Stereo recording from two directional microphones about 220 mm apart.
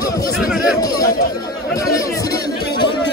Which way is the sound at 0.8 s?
15° left (ahead or behind).